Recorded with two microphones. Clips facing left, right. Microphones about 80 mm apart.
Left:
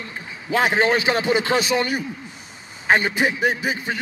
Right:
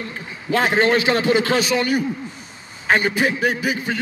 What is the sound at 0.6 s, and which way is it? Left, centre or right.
A man's voice, centre.